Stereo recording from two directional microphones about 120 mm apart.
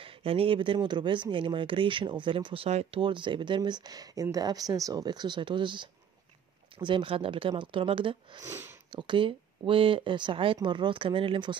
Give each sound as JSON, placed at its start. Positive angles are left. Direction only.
{"t": 0.0, "sound": "speech", "side_deg": -50}
{"t": 8.4, "sound": "speech", "side_deg": -25}
{"t": 8.9, "sound": "speech", "side_deg": -45}